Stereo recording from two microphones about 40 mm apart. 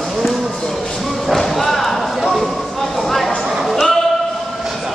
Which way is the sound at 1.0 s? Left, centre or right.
Centre.